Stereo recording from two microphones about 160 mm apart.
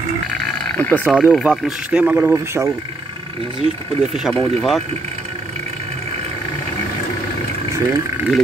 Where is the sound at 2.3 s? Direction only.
15° right (ahead or behind).